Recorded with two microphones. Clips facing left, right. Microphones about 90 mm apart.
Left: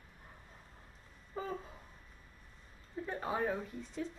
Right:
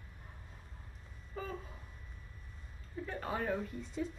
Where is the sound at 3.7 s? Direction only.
Centre (ahead or behind).